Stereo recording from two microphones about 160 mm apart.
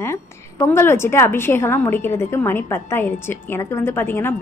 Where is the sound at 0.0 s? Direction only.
15° left (ahead or behind).